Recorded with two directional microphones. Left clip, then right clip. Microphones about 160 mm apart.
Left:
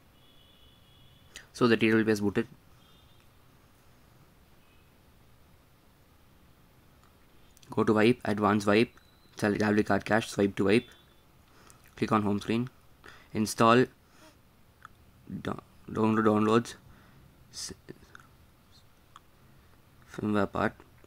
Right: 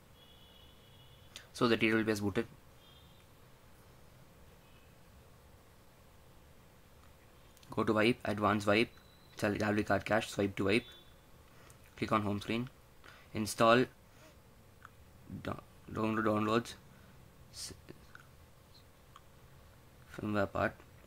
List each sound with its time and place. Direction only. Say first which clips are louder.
1.3 s speech: left 6 dB; 20° left (ahead or behind)
7.6 s speech: left 6 dB; 25° left (ahead or behind)
11.9 s a sound: left 5 dB; 25° left (ahead or behind)
15.4 s speech: left 5 dB; 30° left (ahead or behind)
17.5 s whispering: left 6 dB; 30° left (ahead or behind)
20.1 s speech: left 5 dB; 30° left (ahead or behind)